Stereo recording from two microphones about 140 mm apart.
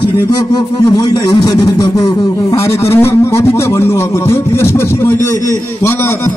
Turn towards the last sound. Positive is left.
turn(degrees=20)  # may be behind; listen again after turning